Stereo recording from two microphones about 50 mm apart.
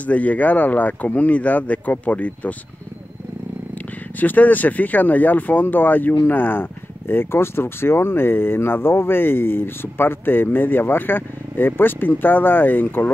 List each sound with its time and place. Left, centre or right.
0.0 s speech: left
3.7 s speech: left